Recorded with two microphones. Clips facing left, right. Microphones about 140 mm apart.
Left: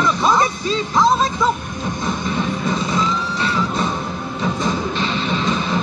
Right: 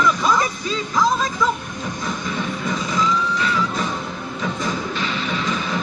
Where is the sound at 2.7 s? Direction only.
25° left (ahead or behind).